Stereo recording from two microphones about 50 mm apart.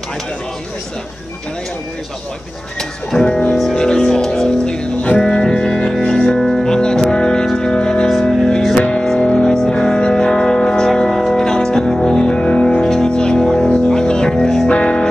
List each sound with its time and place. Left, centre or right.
3.3 s speech: left
3.7 s music: centre
11.1 s music: centre
11.3 s music: centre
14.7 s music: left